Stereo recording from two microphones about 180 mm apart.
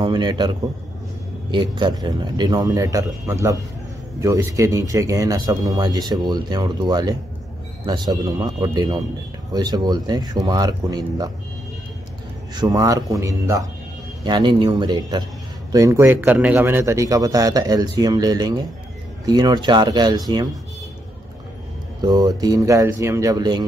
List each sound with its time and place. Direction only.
0.0 s speech: 25° right (ahead or behind)
1.5 s speech: 25° right (ahead or behind)
12.5 s speech: 20° right (ahead or behind)
22.0 s speech: 20° right (ahead or behind)